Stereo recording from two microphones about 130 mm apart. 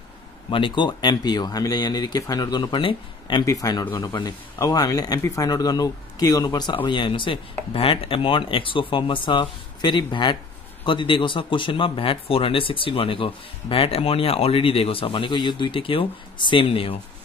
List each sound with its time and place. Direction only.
0.5 s speech: 40° left (ahead or behind)
3.4 s speech: 30° left (ahead or behind); by 17.0 s 45° left (ahead or behind)